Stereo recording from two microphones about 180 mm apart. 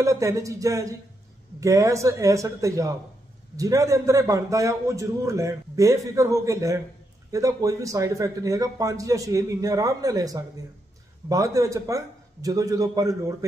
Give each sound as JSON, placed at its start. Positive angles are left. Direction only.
{"t": 0.0, "sound": "a man's voice", "side_deg": -15}